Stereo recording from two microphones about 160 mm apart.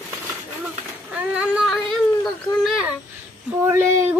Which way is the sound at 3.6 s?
15° right (ahead or behind).